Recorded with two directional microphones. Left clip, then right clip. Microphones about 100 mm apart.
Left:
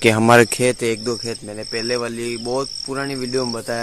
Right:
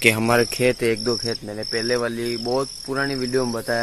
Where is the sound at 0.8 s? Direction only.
30° left (ahead or behind).